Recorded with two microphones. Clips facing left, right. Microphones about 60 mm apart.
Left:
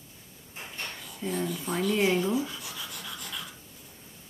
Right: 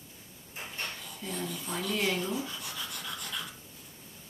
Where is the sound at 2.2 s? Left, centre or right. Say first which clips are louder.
Left 6 dB; centre.